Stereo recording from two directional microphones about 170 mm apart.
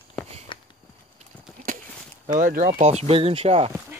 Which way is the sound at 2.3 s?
50° right (ahead or behind).